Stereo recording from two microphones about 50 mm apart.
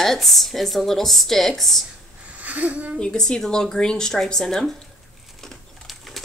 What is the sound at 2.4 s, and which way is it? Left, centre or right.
Speech, right.